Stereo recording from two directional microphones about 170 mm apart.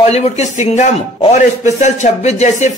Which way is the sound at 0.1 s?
40° left (ahead or behind).